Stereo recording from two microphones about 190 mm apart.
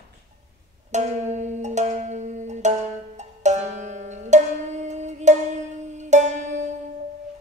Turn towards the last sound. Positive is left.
turn(degrees=-40)  # may be behind; listen again after turning